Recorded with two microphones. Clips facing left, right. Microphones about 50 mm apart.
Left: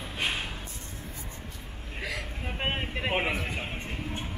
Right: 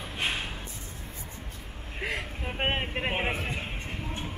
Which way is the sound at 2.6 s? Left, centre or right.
Right.